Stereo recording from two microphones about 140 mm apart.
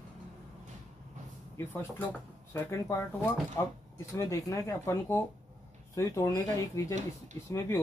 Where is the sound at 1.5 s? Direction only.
15° left (ahead or behind).